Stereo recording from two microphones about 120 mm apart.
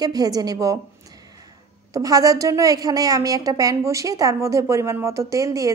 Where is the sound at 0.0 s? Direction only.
35° right (ahead or behind).